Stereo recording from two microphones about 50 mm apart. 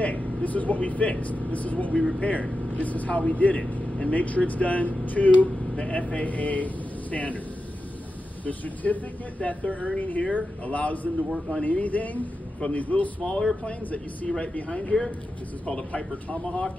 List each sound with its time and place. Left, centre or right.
0.0 s a man's voice: left
8.5 s a man's voice: left
13.2 s a man's voice: centre